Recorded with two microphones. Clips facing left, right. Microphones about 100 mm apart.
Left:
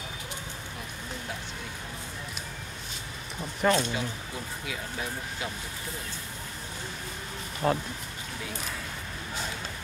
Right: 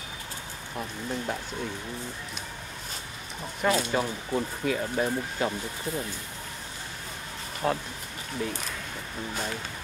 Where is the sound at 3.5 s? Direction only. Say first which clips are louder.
Left 1 dB; 5° right (ahead or behind).